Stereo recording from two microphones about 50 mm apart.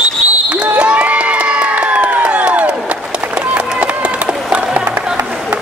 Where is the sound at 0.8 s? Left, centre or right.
Right.